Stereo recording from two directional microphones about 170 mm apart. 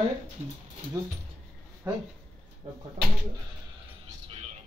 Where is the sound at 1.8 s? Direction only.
15° right (ahead or behind).